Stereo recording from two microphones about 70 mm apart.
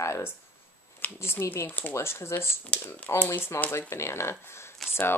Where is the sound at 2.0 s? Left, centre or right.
Left.